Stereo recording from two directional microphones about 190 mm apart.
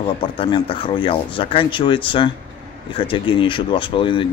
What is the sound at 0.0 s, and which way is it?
Speech, 25° left (ahead or behind).